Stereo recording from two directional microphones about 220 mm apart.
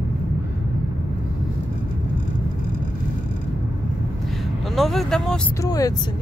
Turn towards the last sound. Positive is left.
turn(degrees=15)  # may be behind; listen again after turning